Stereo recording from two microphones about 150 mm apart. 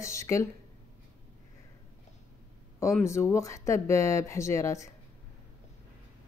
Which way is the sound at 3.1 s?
20° left (ahead or behind).